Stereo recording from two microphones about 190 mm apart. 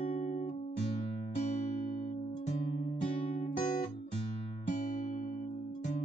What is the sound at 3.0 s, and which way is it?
Music, 45° left (ahead or behind).